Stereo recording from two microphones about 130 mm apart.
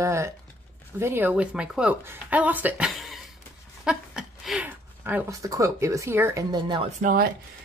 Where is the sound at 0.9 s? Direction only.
20° right (ahead or behind).